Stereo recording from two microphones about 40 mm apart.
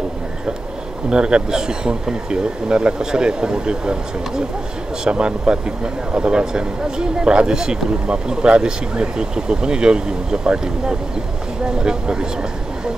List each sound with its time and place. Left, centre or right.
1.1 s a man's voice: right